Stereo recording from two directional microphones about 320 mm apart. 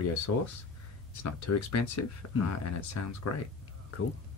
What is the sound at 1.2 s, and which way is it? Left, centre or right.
Speech, left.